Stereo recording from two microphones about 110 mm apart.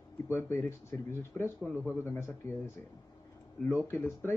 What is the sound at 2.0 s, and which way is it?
Speech, 20° left (ahead or behind).